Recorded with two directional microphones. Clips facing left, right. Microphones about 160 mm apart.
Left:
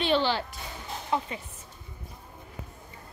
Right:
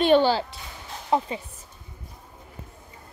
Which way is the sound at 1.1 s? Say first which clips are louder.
Right 6 dB; 35° right (ahead or behind).